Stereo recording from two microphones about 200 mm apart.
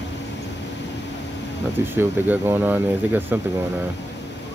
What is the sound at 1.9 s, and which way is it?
Speech, 10° right (ahead or behind).